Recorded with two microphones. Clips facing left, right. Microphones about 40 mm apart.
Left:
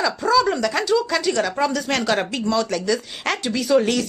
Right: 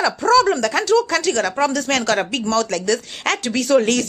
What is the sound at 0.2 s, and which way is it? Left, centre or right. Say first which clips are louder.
Speech: right 4 dB; centre.